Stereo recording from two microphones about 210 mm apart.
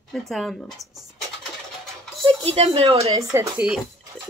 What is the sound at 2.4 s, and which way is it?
Speech, 30° right (ahead or behind).